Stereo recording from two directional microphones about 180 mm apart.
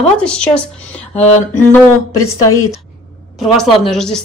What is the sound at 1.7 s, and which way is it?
Speech, 15° left (ahead or behind).